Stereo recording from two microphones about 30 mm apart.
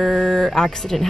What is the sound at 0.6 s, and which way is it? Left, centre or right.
Speech, left.